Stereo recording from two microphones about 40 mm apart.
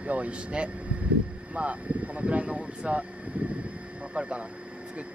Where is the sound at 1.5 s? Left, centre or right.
Right.